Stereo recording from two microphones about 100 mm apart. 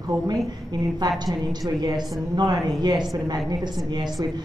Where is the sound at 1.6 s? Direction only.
45° right (ahead or behind).